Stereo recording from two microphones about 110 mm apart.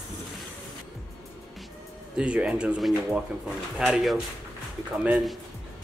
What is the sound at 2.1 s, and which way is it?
Speech, 10° right (ahead or behind).